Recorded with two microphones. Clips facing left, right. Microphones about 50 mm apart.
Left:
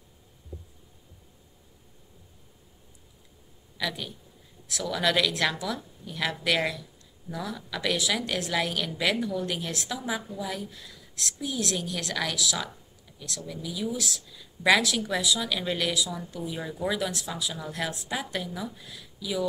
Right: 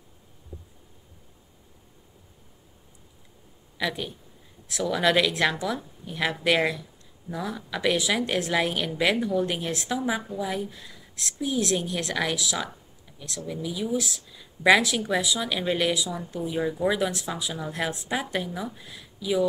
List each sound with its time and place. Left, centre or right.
3.7 s a woman's voice: centre